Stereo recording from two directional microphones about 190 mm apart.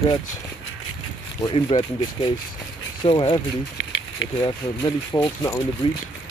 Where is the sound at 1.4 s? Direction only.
25° left (ahead or behind).